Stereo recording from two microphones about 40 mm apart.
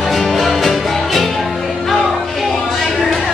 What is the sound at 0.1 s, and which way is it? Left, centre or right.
Music, centre.